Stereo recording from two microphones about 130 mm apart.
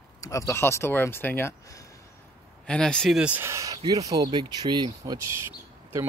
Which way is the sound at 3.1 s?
10° right (ahead or behind).